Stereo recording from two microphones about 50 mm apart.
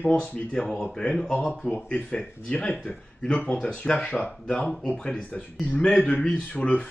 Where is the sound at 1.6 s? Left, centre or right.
Left.